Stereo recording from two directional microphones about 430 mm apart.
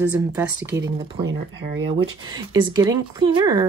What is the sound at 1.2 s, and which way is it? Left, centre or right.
Speech, right.